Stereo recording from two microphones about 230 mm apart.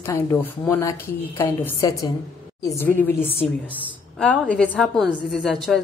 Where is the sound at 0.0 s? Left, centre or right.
Centre.